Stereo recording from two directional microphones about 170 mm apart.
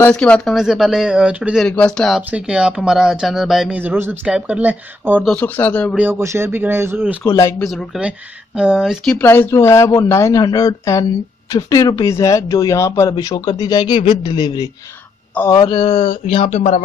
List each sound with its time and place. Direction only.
0.0 s speech: 5° left (ahead or behind)
1.7 s speech: 5° left (ahead or behind); by 5.3 s 10° right (ahead or behind)
5.3 s speech: 10° left (ahead or behind)
5.9 s speech: 15° right (ahead or behind)
7.2 s speech: 15° left (ahead or behind)
7.7 s speech: centre (ahead or behind)
9.2 s speech: 15° left (ahead or behind); by 16.8 s 40° left (ahead or behind)